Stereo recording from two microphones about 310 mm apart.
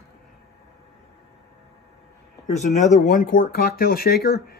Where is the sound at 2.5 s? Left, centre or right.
Left.